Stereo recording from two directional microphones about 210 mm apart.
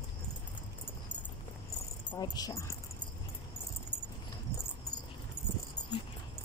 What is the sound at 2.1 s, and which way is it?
Speech, 20° left (ahead or behind).